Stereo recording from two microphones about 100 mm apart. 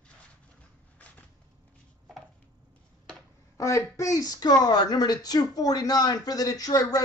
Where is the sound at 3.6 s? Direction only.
30° left (ahead or behind).